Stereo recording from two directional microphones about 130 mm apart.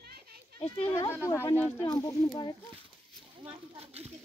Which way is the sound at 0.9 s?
20° left (ahead or behind).